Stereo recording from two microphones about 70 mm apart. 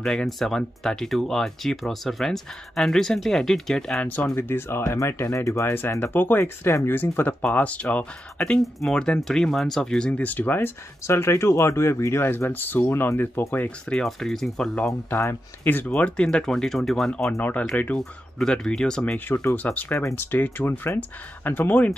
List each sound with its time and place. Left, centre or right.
0.0 s speech: centre
4.4 s speech: left
7.5 s speech: left
8.5 s speech: centre
10.2 s speech: left
14.0 s speech: centre
15.6 s speech: left
16.2 s speech: centre
17.4 s speech: left
17.9 s speech: centre
19.1 s speech: left